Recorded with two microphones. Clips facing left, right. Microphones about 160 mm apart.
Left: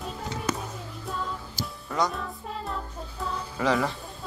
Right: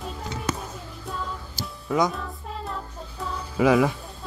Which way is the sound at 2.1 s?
Centre (ahead or behind).